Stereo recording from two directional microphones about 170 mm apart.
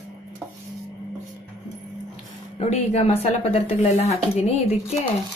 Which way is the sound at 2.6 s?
40° left (ahead or behind).